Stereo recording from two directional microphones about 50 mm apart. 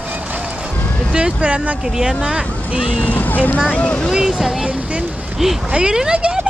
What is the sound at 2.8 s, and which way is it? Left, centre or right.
Speech, left.